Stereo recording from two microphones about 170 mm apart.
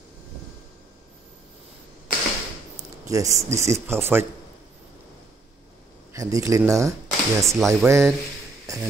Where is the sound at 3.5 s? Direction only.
15° right (ahead or behind).